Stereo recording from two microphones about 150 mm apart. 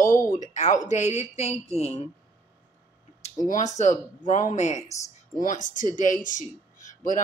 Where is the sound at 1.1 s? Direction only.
45° left (ahead or behind).